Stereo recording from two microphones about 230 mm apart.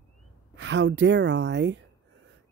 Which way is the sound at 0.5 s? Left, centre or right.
Right.